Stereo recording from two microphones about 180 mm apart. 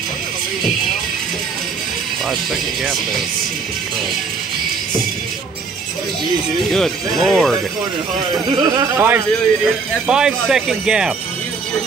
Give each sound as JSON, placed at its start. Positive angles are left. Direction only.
{"t": 6.7, "sound": "speech", "side_deg": 0}
{"t": 8.5, "sound": "speech", "side_deg": -20}
{"t": 10.0, "sound": "speech", "side_deg": -5}